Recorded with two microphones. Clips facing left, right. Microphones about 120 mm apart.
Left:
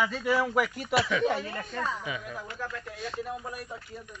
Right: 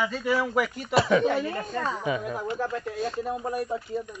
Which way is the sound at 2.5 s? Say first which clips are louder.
Right 9 dB; 25° right (ahead or behind).